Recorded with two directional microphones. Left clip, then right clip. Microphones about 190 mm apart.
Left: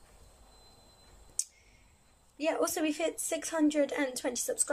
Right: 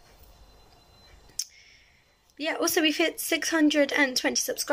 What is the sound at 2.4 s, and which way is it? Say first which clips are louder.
Speech: right 5 dB; centre (ahead or behind).